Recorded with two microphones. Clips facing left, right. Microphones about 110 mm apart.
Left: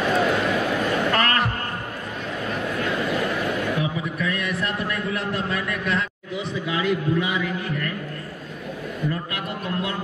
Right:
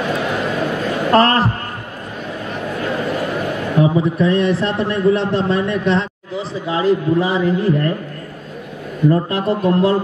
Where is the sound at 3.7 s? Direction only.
35° right (ahead or behind).